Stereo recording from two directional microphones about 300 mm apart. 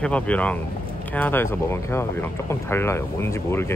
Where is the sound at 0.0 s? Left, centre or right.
Centre.